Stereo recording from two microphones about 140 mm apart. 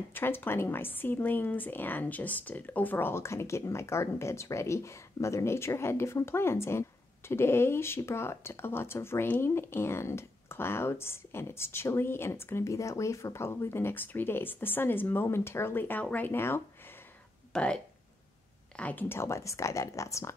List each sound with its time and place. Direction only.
0.1 s speech: 15° left (ahead or behind)
17.5 s a sound: 5° left (ahead or behind)
18.8 s speech: 10° left (ahead or behind)